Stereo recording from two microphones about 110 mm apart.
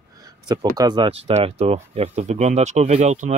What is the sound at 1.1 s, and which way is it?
Speech, 65° right (ahead or behind).